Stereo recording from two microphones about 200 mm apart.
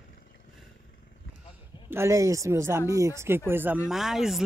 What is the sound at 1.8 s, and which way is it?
Speech, 15° right (ahead or behind).